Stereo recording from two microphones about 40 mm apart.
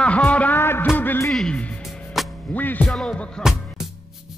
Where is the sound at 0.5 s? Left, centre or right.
Left.